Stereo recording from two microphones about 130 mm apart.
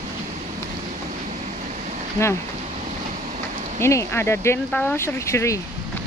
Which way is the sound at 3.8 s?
20° left (ahead or behind).